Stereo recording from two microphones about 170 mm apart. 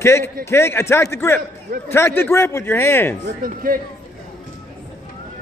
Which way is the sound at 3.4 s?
55° right (ahead or behind).